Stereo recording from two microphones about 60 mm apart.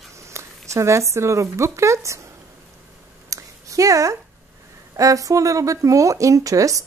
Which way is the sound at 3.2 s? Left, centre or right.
Right.